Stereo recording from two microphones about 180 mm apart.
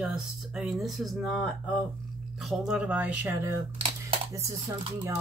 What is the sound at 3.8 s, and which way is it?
Computer keyboard, 35° right (ahead or behind).